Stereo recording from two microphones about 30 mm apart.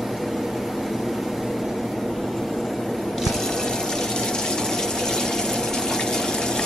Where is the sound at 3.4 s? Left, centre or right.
Centre.